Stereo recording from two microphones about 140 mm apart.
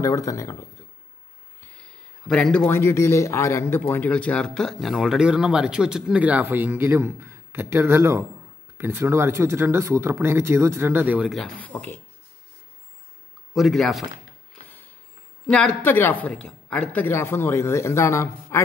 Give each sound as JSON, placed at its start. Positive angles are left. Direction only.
{"t": 0.0, "sound": "speech", "side_deg": 25}
{"t": 1.8, "sound": "a sound", "side_deg": 5}
{"t": 2.6, "sound": "speech", "side_deg": 20}
{"t": 11.2, "sound": "speech", "side_deg": 0}
{"t": 11.5, "sound": "a woman's voice", "side_deg": 10}
{"t": 13.5, "sound": "speech", "side_deg": 0}
{"t": 15.5, "sound": "a woman's voice", "side_deg": 10}
{"t": 17.0, "sound": "speech", "side_deg": 20}